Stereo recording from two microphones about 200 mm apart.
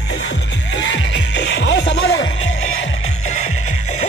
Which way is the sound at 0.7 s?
65° left (ahead or behind).